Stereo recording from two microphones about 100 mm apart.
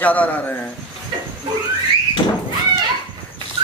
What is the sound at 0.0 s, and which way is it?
Speech, 15° left (ahead or behind).